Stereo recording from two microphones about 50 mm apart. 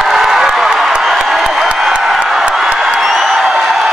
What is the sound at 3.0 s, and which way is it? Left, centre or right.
Music, centre.